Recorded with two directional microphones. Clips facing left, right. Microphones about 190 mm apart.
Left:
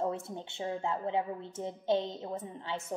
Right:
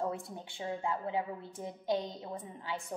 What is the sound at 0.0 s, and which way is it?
Speech, 25° left (ahead or behind).